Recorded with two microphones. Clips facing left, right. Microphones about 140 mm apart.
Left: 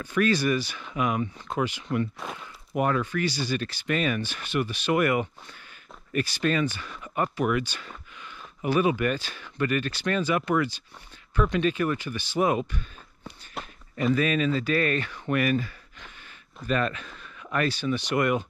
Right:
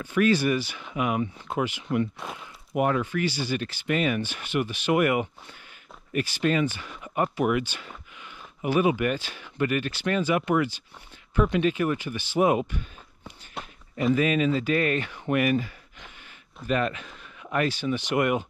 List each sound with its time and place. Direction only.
0.0 s speech: 15° right (ahead or behind)
11.6 s speech: 20° right (ahead or behind)
13.6 s a sound: centre (ahead or behind)
13.9 s speech: 20° right (ahead or behind)